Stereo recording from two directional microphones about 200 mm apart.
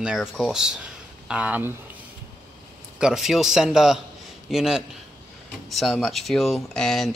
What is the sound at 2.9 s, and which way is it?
Speech, 5° right (ahead or behind).